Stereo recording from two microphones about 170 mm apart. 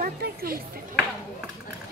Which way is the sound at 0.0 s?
60° right (ahead or behind).